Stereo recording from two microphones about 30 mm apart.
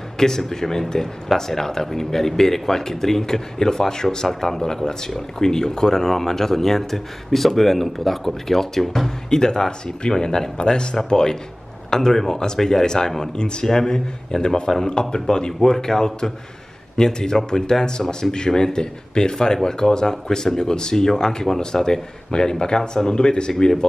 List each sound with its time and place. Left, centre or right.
0.4 s speech: centre
9.3 s speech: left
11.9 s speech: centre
13.7 s speech: centre